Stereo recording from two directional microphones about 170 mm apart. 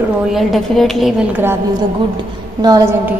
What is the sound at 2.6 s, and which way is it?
Speech, 20° right (ahead or behind).